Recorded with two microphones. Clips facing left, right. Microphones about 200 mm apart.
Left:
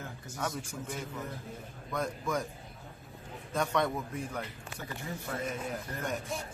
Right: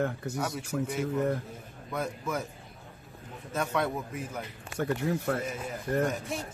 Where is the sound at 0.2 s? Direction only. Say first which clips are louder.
Right 4 dB; 65° right (ahead or behind).